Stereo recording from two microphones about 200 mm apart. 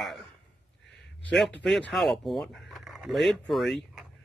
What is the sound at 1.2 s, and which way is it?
Speech, 5° left (ahead or behind).